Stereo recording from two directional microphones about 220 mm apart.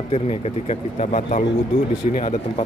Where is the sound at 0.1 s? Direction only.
30° left (ahead or behind).